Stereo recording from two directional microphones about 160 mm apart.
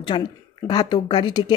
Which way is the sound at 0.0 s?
30° left (ahead or behind).